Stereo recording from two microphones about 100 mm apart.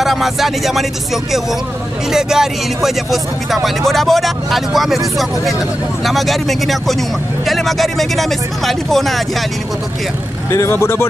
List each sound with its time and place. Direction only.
0.0 s speech: centre (ahead or behind)
10.5 s speech: 30° left (ahead or behind)